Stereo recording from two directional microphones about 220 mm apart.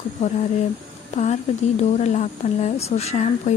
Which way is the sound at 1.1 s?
30° left (ahead or behind).